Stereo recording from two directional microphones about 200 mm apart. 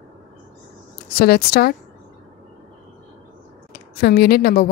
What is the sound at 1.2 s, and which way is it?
Speech, 50° left (ahead or behind).